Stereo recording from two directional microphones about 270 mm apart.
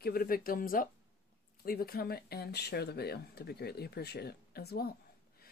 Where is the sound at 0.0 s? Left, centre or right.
Left.